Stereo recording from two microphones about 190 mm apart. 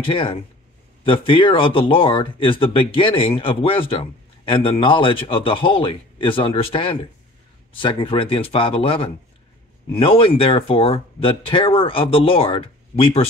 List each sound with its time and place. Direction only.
0.0 s speech: 30° left (ahead or behind)